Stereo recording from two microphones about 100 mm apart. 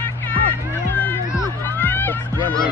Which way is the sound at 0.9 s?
20° left (ahead or behind).